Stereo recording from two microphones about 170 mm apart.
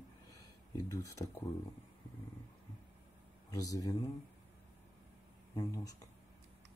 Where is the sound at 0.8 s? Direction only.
20° left (ahead or behind).